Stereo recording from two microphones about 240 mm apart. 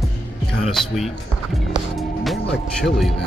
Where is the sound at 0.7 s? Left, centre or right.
Centre.